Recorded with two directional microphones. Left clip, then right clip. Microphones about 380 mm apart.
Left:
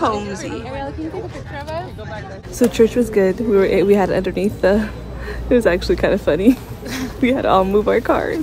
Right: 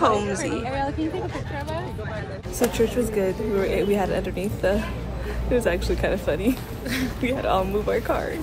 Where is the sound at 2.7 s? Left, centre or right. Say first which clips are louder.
Left 10 dB; left.